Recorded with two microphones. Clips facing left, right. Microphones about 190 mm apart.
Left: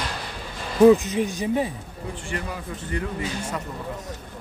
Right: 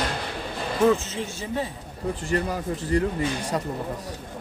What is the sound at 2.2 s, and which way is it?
A man's voice, 40° right (ahead or behind).